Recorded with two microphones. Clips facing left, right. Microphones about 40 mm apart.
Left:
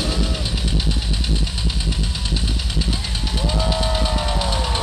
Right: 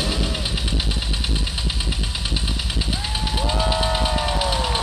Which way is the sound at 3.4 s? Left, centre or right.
Centre.